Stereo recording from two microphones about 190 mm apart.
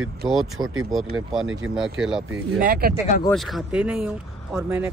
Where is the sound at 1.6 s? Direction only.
90° right.